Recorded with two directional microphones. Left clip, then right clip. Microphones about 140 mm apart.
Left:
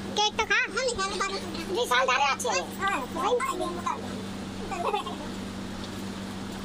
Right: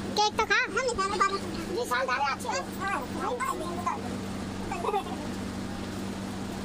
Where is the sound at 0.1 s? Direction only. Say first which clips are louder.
Even; 15° right (ahead or behind).